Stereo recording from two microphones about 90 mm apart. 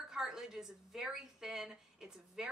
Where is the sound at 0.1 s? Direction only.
5° right (ahead or behind).